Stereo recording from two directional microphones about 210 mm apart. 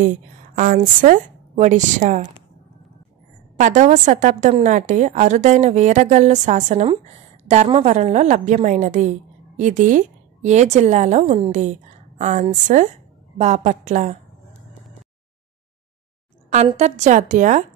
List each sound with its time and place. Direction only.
0.0 s a woman's voice: 40° right (ahead or behind)
3.5 s a woman's voice: 35° right (ahead or behind)
16.5 s a woman's voice: 30° right (ahead or behind)